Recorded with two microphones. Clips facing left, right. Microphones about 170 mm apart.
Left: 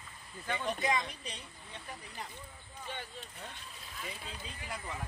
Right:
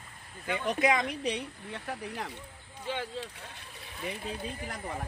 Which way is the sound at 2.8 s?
90° right.